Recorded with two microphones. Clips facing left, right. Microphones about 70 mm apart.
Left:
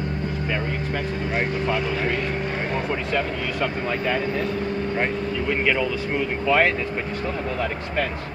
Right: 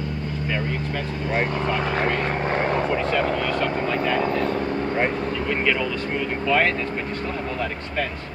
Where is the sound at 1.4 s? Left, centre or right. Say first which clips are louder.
Even; right.